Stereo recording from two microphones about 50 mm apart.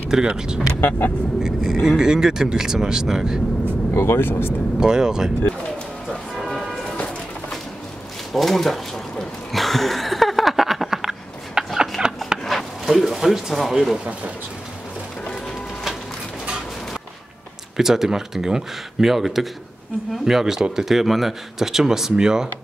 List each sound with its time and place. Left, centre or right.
0.1 s speech: centre
0.7 s speech: left
1.4 s speech: centre
3.9 s speech: left
4.7 s speech: centre
6.3 s music: centre
8.3 s speech: centre
9.5 s a sound: centre
13.9 s speech: right
17.7 s speech: centre